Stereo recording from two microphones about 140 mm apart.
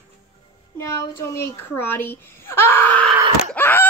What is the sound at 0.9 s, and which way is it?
A child's voice, 20° left (ahead or behind).